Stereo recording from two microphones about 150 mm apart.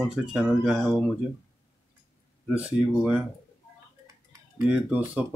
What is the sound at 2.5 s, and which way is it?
Speech, 10° right (ahead or behind).